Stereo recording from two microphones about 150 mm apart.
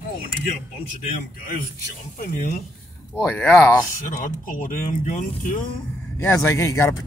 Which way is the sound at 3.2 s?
15° left (ahead or behind).